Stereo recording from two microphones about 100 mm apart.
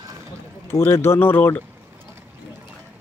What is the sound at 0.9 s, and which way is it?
Speech, 25° left (ahead or behind).